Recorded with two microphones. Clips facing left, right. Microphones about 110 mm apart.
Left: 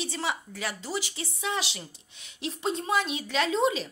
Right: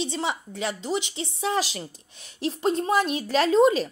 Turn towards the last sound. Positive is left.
turn(degrees=-45)  # may be behind; listen again after turning